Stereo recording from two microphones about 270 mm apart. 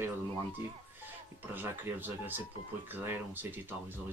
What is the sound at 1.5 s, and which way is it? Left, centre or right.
Speech, centre.